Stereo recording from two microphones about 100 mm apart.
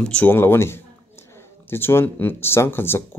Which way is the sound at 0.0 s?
15° left (ahead or behind).